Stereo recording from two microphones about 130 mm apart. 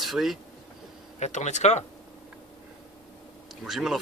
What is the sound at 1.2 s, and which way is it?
Speech, 65° left (ahead or behind).